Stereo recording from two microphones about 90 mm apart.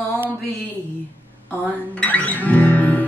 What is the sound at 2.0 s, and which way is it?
Music, 15° left (ahead or behind).